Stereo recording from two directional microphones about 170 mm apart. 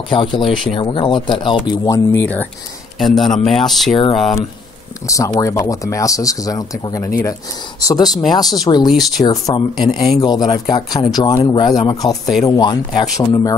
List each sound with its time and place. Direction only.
0.1 s speech: 30° left (ahead or behind)
1.7 s speech: 15° left (ahead or behind)
3.0 s speech: centre (ahead or behind)
3.9 s speech: 35° left (ahead or behind)
5.0 s speech: 20° left (ahead or behind)
8.1 s speech: centre (ahead or behind)
8.5 s speech: 25° left (ahead or behind)
8.8 s speech: centre (ahead or behind)
9.2 s speech: 20° left (ahead or behind)
9.8 s speech: centre (ahead or behind)
10.2 s speech: 25° left (ahead or behind)